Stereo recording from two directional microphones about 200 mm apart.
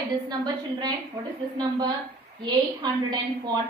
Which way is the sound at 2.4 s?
20° right (ahead or behind).